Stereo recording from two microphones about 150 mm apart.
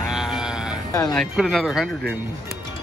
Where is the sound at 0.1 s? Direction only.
5° right (ahead or behind).